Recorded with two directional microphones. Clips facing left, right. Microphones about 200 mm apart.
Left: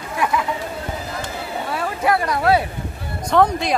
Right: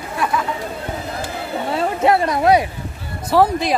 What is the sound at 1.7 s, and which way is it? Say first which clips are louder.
Speech: right 4 dB; 25° right (ahead or behind).